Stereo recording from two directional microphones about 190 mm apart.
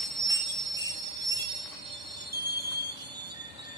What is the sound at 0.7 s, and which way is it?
Train wheels squealing, 20° right (ahead or behind).